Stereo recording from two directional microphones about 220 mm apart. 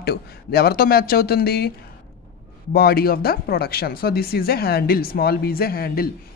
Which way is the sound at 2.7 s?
45° left (ahead or behind).